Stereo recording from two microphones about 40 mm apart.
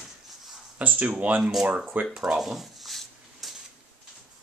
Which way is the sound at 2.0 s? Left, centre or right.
Right.